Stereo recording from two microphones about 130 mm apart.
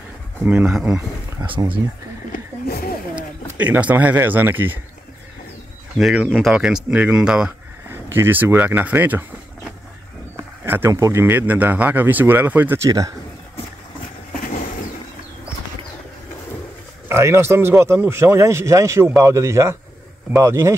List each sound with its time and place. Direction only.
0.4 s speech: 15° right (ahead or behind)
1.4 s speech: 35° right (ahead or behind)
3.5 s speech: 10° right (ahead or behind)
5.9 s speech: centre (ahead or behind)
7.9 s speech: 20° right (ahead or behind)
10.3 s speech: 20° right (ahead or behind)
14.4 s vehicle: 70° left (ahead or behind)
17.1 s speech: 20° right (ahead or behind)